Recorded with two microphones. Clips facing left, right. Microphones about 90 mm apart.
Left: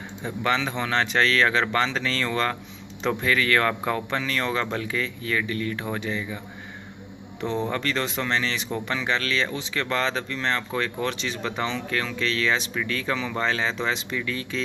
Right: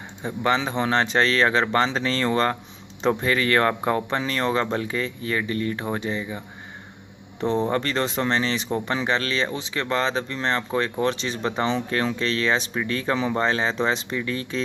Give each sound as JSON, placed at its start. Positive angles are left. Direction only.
{"t": 0.2, "sound": "speech", "side_deg": -30}